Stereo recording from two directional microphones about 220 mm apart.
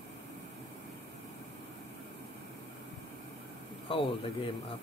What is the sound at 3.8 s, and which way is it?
Speech, 25° left (ahead or behind).